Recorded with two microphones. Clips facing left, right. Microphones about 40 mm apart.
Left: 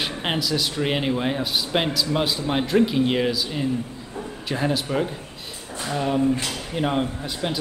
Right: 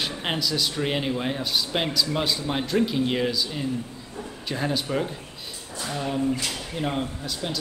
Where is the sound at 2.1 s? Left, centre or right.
Centre.